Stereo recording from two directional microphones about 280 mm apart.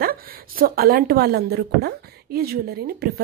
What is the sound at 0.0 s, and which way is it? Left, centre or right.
A woman's voice, right.